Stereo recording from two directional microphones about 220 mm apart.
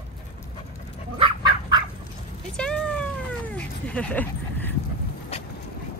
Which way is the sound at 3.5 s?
5° left (ahead or behind).